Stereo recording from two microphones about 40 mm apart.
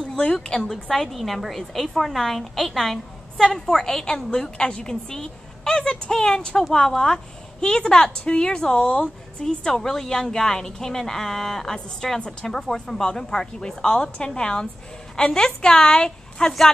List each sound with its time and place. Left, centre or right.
0.2 s a woman's voice: left
0.7 s a woman's voice: centre